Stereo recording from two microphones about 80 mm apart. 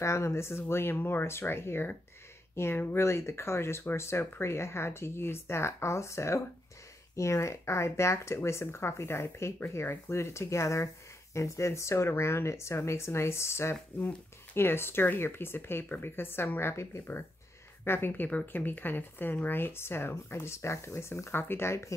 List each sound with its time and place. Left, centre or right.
0.0 s speech: left